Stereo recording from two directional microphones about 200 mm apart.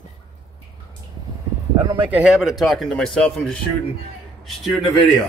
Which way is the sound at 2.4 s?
Centre (ahead or behind).